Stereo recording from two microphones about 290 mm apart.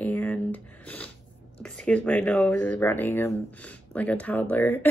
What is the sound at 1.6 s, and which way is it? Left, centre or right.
Speech, centre.